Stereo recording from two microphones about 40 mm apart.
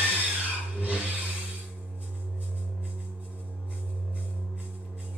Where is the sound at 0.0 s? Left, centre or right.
Right.